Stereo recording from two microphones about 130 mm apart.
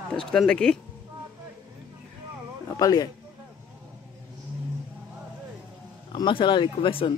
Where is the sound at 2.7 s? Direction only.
30° left (ahead or behind).